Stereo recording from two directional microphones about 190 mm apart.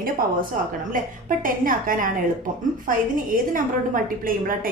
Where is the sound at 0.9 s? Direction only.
45° right (ahead or behind).